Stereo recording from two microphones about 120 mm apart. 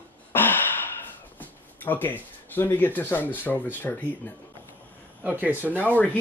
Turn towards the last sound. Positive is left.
turn(degrees=15)  # may be behind; listen again after turning